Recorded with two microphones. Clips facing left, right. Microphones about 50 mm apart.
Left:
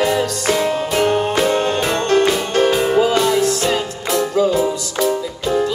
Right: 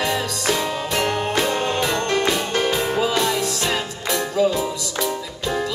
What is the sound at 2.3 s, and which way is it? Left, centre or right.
Music, centre.